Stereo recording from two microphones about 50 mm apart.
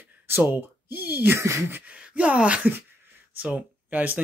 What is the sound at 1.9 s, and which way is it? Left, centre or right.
Speech, right.